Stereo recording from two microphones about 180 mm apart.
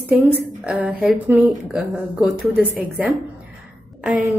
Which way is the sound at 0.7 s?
10° right (ahead or behind).